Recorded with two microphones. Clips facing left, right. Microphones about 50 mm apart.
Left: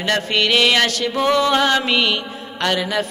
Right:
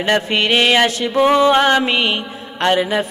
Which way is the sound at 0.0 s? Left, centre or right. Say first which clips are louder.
Right 2 dB; right.